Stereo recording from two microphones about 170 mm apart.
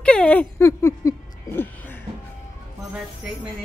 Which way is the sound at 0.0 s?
5° left (ahead or behind).